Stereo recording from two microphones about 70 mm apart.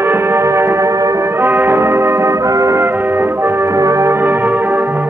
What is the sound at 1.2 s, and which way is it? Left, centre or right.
Brass instrument, right.